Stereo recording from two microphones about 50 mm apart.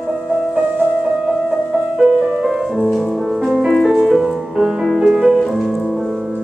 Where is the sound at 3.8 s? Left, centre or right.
Centre.